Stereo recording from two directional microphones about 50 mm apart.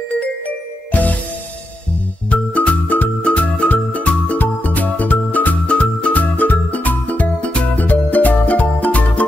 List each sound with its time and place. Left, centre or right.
2.2 s music: left
5.7 s music: left